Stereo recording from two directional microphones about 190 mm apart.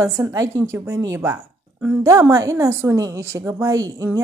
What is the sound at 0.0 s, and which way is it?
A woman's voice, 15° right (ahead or behind).